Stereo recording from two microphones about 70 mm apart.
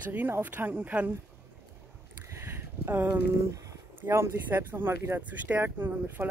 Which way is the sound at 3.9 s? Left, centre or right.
Right.